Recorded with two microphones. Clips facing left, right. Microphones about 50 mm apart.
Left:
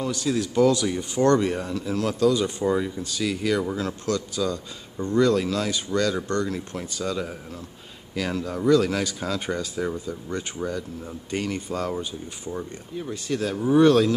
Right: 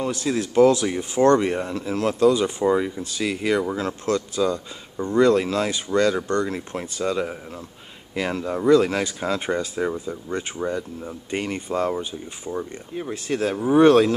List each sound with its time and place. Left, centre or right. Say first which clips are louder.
0.4 s speech: right 4 dB; centre
1.4 s speech: right 2 dB; right
2.3 s speech: right 3 dB; centre
5.3 s speech: right 3 dB; right; by 10.4 s centre
10.6 s speech: right 3 dB; right
11.9 s speech: right 2 dB; centre
12.9 s speech: right 2 dB; right